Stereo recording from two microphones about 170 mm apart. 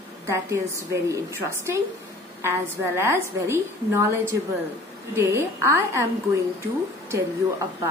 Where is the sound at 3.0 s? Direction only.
15° right (ahead or behind).